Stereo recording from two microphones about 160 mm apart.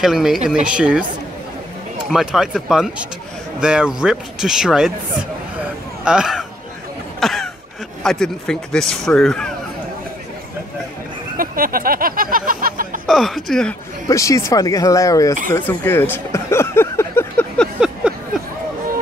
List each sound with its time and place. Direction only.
0.0 s a woman's voice: centre (ahead or behind)
2.0 s speech: centre (ahead or behind)
6.0 s speech: 5° right (ahead or behind)
7.2 s throat clearing: centre (ahead or behind)
8.0 s speech: 5° left (ahead or behind)
11.3 s a sound: 65° right (ahead or behind)
13.0 s speech: centre (ahead or behind)
14.0 s speech: 20° left (ahead or behind)
15.5 s a sound: 15° left (ahead or behind)
17.7 s a sound: 5° right (ahead or behind)